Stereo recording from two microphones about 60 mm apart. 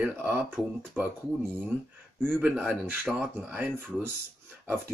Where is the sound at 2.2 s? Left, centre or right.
Right.